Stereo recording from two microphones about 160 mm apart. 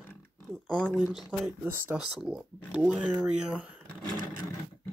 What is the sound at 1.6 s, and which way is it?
Speech, 10° right (ahead or behind).